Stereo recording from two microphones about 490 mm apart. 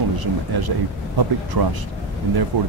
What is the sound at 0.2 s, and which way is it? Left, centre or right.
Speech, right.